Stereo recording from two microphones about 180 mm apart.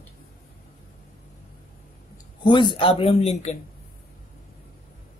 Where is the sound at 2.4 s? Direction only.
25° left (ahead or behind).